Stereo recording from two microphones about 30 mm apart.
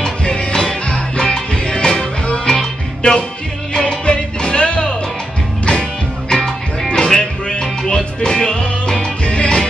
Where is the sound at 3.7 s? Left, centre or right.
Left.